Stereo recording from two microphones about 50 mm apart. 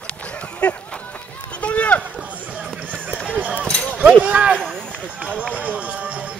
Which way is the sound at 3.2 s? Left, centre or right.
Right.